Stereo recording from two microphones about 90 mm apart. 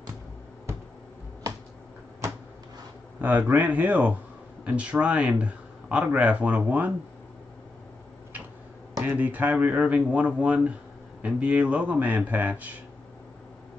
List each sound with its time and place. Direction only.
3.2 s speech: 20° right (ahead or behind)
9.0 s speech: 20° right (ahead or behind)